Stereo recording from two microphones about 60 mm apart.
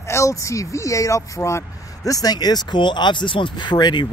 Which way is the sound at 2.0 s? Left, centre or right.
Left.